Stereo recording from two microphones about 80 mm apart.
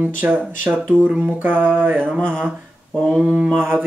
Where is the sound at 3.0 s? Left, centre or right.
Centre.